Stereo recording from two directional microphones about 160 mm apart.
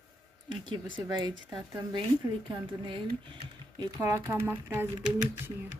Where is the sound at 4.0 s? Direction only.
15° right (ahead or behind).